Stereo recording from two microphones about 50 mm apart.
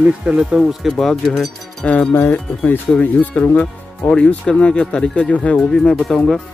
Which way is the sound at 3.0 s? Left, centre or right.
Left.